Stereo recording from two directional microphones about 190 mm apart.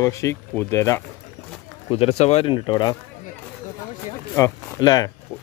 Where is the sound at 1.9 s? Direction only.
30° left (ahead or behind).